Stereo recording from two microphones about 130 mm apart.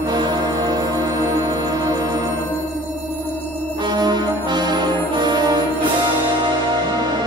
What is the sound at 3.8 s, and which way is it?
Music, 35° right (ahead or behind).